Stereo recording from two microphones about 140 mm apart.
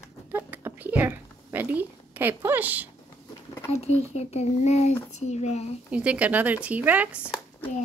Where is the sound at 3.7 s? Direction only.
50° left (ahead or behind).